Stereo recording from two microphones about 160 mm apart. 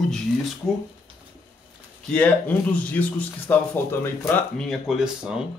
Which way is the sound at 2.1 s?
10° left (ahead or behind).